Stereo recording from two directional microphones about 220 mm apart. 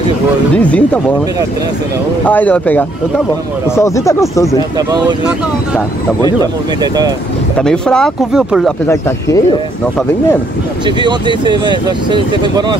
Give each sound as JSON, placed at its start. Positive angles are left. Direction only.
{"t": 0.6, "sound": "speech", "side_deg": 5}
{"t": 2.2, "sound": "speech", "side_deg": 5}
{"t": 4.7, "sound": "speech", "side_deg": -20}
{"t": 6.2, "sound": "speech", "side_deg": -15}
{"t": 7.5, "sound": "speech", "side_deg": 5}
{"t": 11.0, "sound": "speech", "side_deg": -20}